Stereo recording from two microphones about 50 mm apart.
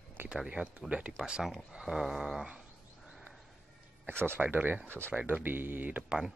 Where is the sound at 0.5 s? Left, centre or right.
Right.